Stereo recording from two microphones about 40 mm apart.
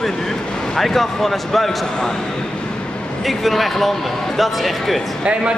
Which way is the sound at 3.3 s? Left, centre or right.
Centre.